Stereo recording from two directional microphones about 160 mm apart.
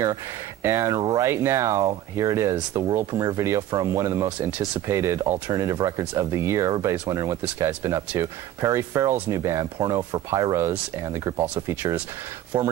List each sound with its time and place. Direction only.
0.0 s speech: 15° right (ahead or behind)